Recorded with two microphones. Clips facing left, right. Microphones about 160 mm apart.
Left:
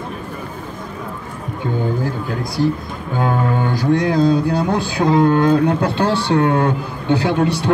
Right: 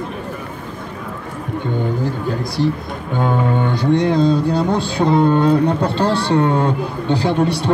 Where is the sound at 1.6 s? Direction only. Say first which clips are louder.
Left 1 dB; 5° left (ahead or behind).